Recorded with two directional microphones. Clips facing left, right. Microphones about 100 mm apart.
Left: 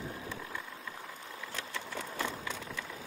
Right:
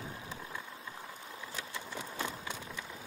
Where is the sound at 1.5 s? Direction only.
15° right (ahead or behind).